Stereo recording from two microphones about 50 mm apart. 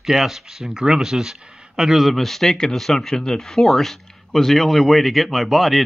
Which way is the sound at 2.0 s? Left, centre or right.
Centre.